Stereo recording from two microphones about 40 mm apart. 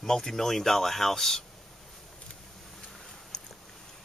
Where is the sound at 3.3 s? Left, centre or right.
Left.